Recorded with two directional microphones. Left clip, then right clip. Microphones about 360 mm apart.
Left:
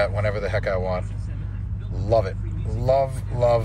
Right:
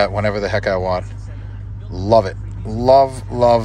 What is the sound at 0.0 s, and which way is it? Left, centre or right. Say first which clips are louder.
Speech: right 6 dB; centre.